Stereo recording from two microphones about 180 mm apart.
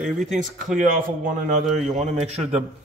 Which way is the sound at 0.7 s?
50° right (ahead or behind).